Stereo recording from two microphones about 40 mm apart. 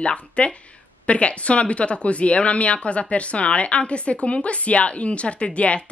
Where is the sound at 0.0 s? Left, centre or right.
Left.